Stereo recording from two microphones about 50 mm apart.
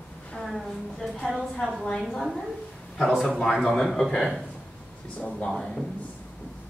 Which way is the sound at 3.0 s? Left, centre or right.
Centre.